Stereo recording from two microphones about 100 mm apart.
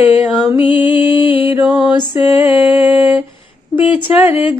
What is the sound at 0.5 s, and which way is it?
Music, 60° left (ahead or behind).